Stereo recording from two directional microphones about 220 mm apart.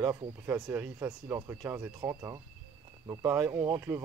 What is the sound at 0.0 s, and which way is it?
Speech, 15° right (ahead or behind).